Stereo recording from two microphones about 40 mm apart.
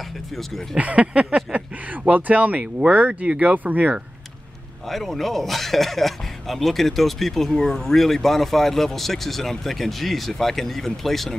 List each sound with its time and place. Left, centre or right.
0.7 s speech: right
3.3 s speech: right
4.8 s speech: centre